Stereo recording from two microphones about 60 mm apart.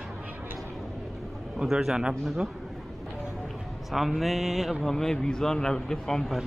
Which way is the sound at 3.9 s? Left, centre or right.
Centre.